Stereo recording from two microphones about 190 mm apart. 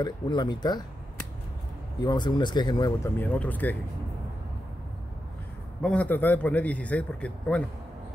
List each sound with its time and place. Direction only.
0.0 s speech: 20° left (ahead or behind)
2.0 s speech: 20° left (ahead or behind)
5.8 s a man's voice: 5° left (ahead or behind)